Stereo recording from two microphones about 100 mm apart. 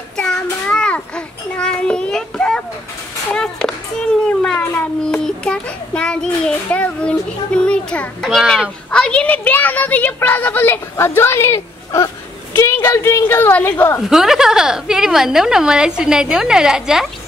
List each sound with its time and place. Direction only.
0.1 s child singing: 5° left (ahead or behind)
3.3 s a sound: 5° left (ahead or behind)
8.3 s speech: centre (ahead or behind)
8.9 s a woman's voice: 10° left (ahead or behind)
14.0 s a woman's voice: 5° right (ahead or behind)